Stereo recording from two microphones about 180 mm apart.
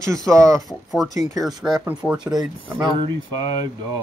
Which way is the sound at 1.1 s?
40° left (ahead or behind).